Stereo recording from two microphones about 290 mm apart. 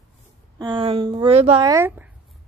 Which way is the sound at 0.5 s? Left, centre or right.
Centre.